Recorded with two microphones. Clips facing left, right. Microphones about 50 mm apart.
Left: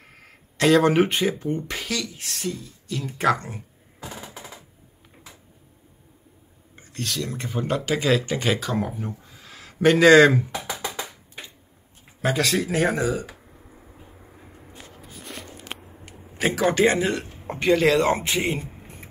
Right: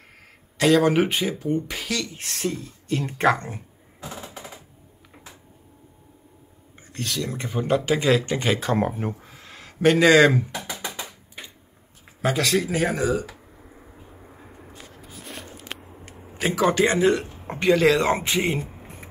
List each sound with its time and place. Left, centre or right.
0.2 s speech: centre
3.2 s speech: centre
6.9 s speech: centre
8.5 s speech: right
8.8 s speech: right
9.5 s a sound: centre
10.2 s speech: centre
12.2 s speech: centre
14.5 s a sound: centre
16.7 s speech: centre